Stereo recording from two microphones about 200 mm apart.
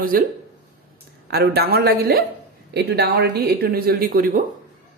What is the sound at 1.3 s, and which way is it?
Speech, 50° right (ahead or behind).